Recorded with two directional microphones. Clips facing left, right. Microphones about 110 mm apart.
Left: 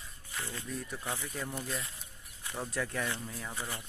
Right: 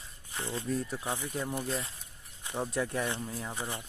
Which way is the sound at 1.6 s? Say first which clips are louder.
Right 4 dB; 30° right (ahead or behind).